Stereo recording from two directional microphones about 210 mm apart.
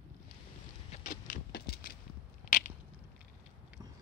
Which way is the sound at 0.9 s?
35° left (ahead or behind).